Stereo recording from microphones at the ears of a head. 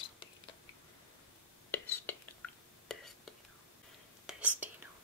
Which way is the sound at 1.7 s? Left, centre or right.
Left.